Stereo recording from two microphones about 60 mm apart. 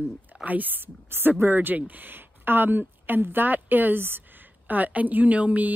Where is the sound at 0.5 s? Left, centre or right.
Right.